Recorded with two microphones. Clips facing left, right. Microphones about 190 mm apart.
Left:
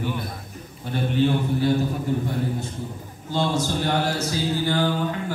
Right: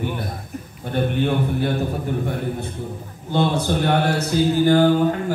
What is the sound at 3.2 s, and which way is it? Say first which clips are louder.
A man's voice: right 4 dB; 60° right (ahead or behind).